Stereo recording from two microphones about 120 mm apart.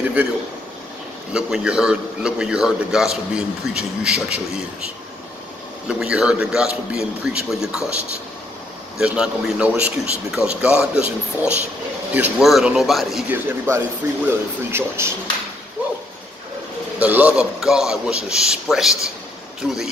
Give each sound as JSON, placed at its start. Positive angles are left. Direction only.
{"t": 1.3, "sound": "a man's voice", "side_deg": -5}
{"t": 5.9, "sound": "a man's voice", "side_deg": -10}
{"t": 8.9, "sound": "a man's voice", "side_deg": -5}
{"t": 13.3, "sound": "speech", "side_deg": -20}
{"t": 17.0, "sound": "a man's voice", "side_deg": -10}